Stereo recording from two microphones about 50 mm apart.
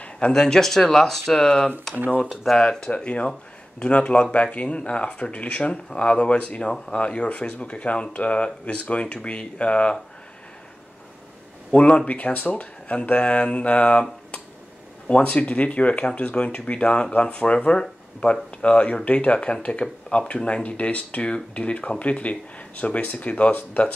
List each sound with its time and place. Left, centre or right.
0.3 s speech: centre
2.9 s speech: left
11.7 s speech: left
15.0 s speech: left